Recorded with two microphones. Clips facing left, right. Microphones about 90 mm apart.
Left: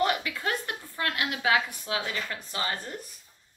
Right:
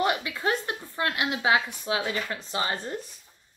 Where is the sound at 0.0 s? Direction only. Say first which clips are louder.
Right 1 dB; 20° right (ahead or behind).